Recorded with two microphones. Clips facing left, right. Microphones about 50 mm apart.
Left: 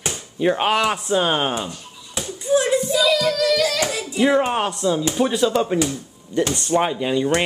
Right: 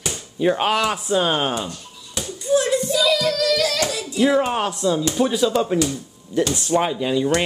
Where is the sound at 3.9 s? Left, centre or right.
Left.